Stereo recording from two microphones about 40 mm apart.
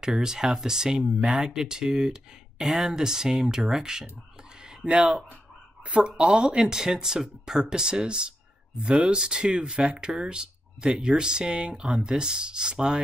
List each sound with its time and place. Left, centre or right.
0.0 s speech: centre
4.8 s speech: right